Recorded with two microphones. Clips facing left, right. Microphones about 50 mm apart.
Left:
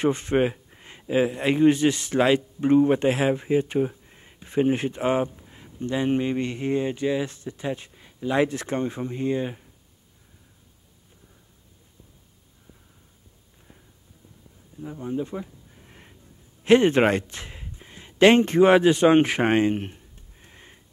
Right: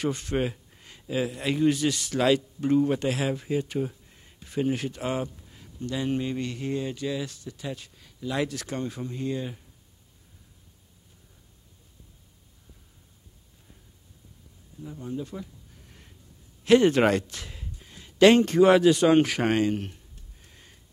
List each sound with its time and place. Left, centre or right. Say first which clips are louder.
0.0 s a man's voice: left 6 dB; left
14.8 s a sound: left 5 dB; left
16.6 s speech: left 2 dB; left